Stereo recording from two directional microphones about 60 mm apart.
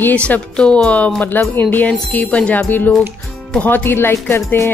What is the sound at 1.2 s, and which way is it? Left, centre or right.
Speech, left.